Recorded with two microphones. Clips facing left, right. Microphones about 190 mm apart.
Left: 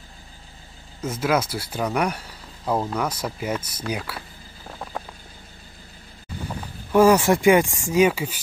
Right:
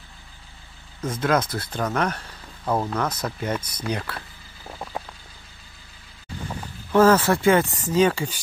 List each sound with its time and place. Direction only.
1.0 s speech: 10° left (ahead or behind)
6.9 s speech: 10° left (ahead or behind)